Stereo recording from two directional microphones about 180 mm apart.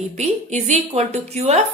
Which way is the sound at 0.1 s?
40° right (ahead or behind).